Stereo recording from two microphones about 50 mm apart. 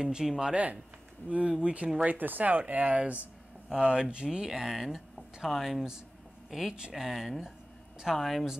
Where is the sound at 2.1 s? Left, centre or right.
Right.